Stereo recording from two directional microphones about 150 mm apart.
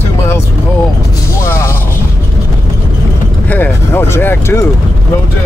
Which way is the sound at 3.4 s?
10° left (ahead or behind).